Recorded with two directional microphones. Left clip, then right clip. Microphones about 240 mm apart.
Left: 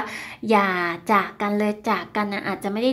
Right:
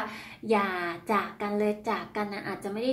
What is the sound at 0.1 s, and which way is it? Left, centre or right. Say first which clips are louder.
A woman's voice: left 9 dB; left.